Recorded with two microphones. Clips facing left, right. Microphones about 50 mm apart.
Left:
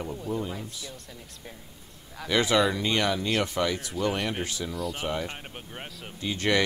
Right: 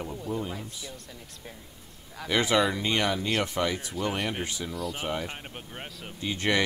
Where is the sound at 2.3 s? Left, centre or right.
Centre.